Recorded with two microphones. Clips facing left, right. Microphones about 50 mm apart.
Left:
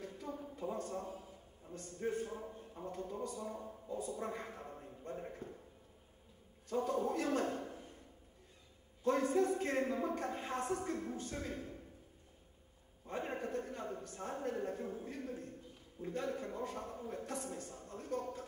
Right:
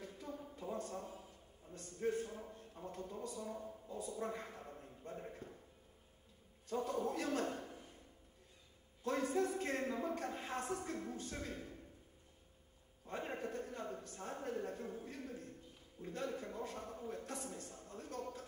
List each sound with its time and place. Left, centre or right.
0.0 s a sound: centre
2.8 s a man's voice: centre
6.7 s a man's voice: centre
9.0 s a woman's voice: centre
13.0 s a sound: centre
13.3 s a woman's voice: centre